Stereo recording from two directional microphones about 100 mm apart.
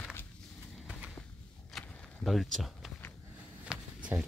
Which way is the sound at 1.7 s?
Centre (ahead or behind).